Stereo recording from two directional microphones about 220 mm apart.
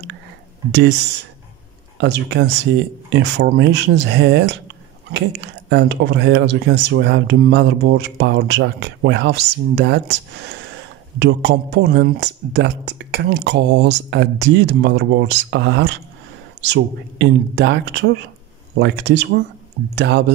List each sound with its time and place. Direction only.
0.7 s speech: 50° right (ahead or behind)
2.0 s speech: 55° right (ahead or behind)
11.1 s speech: 50° right (ahead or behind)